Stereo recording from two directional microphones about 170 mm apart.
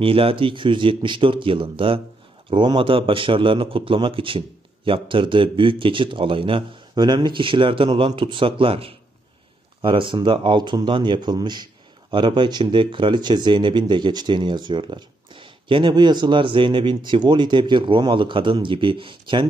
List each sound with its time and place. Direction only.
0.0 s a man's voice: 35° right (ahead or behind)